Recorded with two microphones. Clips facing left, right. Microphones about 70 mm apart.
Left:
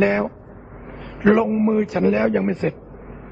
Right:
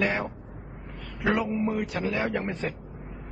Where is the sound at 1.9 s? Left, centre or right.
Left.